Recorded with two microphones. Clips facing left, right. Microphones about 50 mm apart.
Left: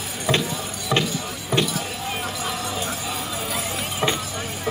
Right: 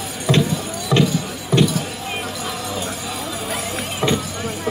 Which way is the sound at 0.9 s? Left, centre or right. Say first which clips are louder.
Right 5 dB; left.